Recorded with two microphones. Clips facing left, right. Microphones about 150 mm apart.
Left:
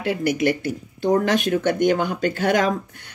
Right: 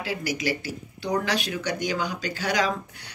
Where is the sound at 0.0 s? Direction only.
55° left (ahead or behind).